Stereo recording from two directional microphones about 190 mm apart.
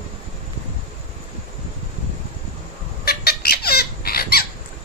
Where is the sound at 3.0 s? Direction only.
55° left (ahead or behind).